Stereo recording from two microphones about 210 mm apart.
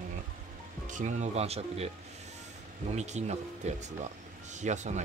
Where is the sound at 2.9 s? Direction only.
35° right (ahead or behind).